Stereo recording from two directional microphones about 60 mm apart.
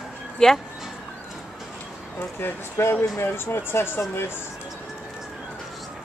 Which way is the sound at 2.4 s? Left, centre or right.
Left.